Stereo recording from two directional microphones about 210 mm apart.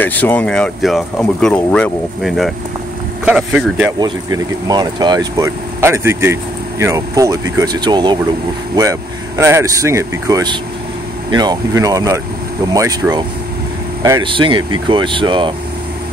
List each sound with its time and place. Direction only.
0.0 s speech: 10° left (ahead or behind)
4.0 s speech: 15° right (ahead or behind)
9.4 s speech: 15° right (ahead or behind)